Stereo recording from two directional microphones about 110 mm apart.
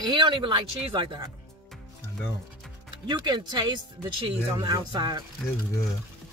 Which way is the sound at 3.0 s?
40° right (ahead or behind).